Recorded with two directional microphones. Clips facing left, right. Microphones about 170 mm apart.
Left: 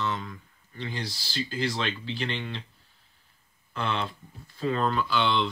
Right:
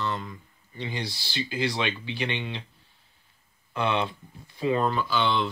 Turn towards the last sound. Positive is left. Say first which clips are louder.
# even
turn(degrees=-5)  # may be behind; listen again after turning